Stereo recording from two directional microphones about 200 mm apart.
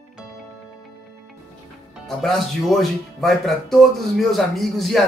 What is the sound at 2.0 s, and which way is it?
Speech, centre (ahead or behind).